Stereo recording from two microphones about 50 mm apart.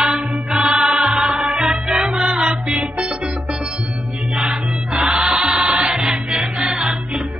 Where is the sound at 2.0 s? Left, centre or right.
Centre.